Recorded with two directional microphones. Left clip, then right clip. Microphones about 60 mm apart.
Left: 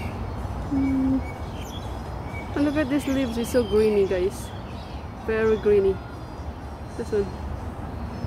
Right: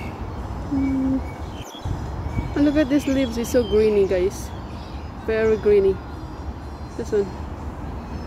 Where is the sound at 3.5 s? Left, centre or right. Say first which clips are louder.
Right 3 dB; right.